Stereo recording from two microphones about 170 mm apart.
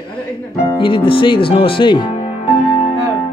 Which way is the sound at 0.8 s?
30° left (ahead or behind).